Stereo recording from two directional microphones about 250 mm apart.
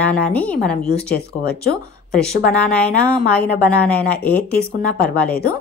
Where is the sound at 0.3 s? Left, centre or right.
Centre.